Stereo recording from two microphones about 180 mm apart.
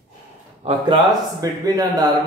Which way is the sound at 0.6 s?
35° right (ahead or behind).